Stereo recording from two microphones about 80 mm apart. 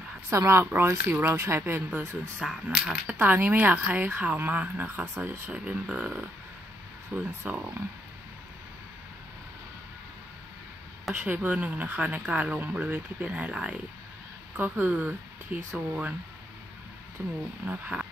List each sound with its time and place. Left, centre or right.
0.3 s speech: right
2.0 s speech: centre; by 5.4 s right
5.5 s speech: centre
11.1 s speech: centre
17.2 s speech: right